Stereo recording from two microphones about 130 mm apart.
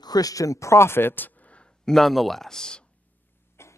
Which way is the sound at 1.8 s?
Centre (ahead or behind).